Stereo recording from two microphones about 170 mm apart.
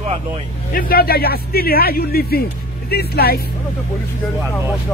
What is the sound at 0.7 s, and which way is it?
Speech, 60° left (ahead or behind).